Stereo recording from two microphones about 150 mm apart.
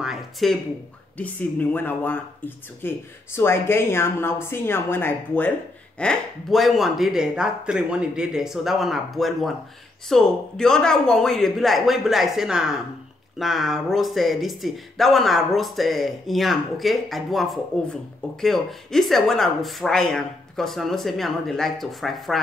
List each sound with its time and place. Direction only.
0.0 s a sound: centre (ahead or behind)
1.1 s a woman's voice: 10° left (ahead or behind)
5.9 s speech: 5° left (ahead or behind)